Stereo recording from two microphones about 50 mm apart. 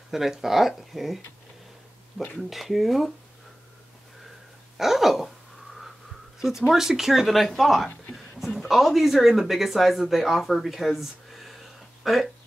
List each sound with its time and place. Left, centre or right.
0.1 s speech: centre
2.2 s speech: centre
2.5 s speech: centre
4.7 s a sound: centre
6.7 s speech: centre